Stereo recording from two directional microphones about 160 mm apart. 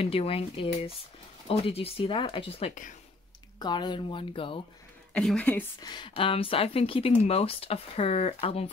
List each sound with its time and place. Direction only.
0.0 s speech: 35° left (ahead or behind)
5.1 s a woman's voice: 5° left (ahead or behind)
5.8 s speech: 25° left (ahead or behind)